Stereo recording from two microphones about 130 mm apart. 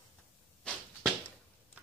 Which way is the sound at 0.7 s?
10° left (ahead or behind).